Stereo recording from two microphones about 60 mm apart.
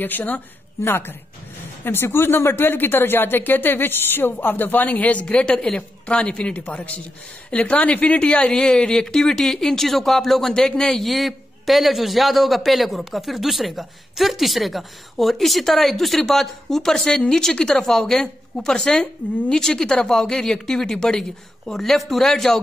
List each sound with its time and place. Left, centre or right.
0.0 s speech: left
0.8 s speech: left; by 22.6 s centre